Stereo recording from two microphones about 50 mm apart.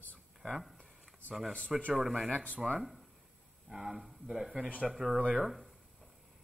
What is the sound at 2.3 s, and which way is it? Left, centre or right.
Speech, left.